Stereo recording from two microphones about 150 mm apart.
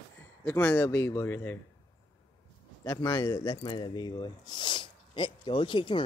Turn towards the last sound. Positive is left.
turn(degrees=35)  # may be behind; listen again after turning